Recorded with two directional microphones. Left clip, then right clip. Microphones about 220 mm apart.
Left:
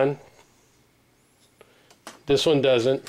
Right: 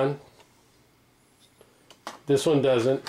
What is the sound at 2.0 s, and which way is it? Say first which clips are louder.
Speech: left 2 dB; centre (ahead or behind).